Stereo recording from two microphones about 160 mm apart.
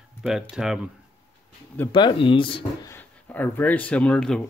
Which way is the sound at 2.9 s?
10° left (ahead or behind).